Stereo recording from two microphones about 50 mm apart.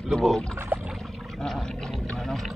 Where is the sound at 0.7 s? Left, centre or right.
Right.